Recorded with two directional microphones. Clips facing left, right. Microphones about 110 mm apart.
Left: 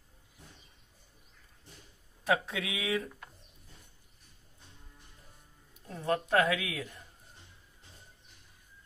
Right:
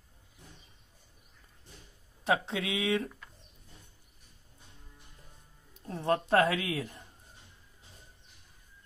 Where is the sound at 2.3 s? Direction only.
25° right (ahead or behind).